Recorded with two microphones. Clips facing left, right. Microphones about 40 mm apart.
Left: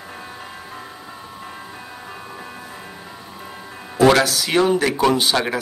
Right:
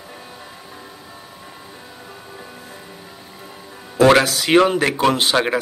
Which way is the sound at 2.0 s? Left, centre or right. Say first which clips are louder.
Left 2 dB; left.